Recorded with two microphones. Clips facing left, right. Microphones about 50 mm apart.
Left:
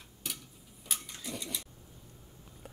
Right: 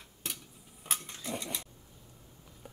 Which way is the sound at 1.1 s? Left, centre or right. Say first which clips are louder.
Right 2 dB; right.